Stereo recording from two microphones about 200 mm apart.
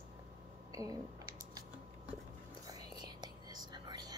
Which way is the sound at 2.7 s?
20° right (ahead or behind).